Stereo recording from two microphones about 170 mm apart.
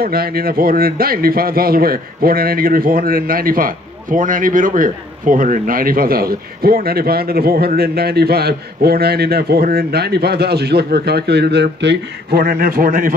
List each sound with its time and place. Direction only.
0.0 s a man's voice: 65° right (ahead or behind)